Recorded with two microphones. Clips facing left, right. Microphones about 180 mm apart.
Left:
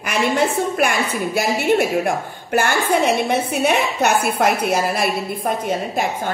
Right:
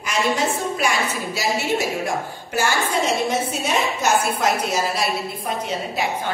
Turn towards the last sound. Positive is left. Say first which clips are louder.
# left 3 dB
turn(degrees=50)  # may be behind; listen again after turning